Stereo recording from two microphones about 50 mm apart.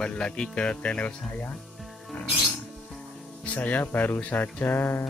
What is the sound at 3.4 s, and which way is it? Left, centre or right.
Speech, left.